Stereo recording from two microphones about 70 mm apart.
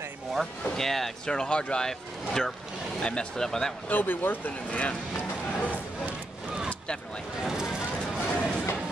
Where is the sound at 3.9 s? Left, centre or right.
Left.